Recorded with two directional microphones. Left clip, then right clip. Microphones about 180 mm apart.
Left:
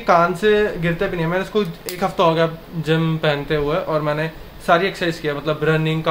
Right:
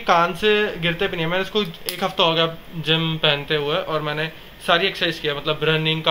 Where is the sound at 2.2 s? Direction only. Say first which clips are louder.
Left 2 dB; 15° left (ahead or behind).